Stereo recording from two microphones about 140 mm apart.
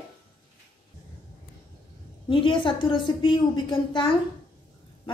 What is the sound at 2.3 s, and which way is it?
A woman's voice, 35° left (ahead or behind).